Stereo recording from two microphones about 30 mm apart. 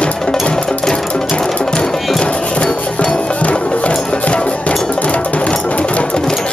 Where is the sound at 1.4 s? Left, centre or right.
Left.